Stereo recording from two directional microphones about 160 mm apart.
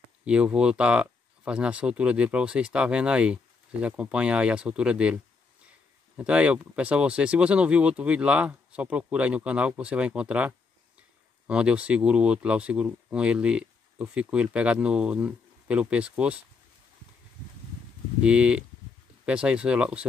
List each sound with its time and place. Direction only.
0.2 s speech: 5° right (ahead or behind)
18.2 s speech: 5° right (ahead or behind)